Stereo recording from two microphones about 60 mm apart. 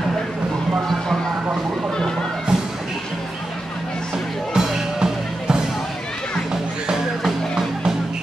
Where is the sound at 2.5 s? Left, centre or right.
Centre.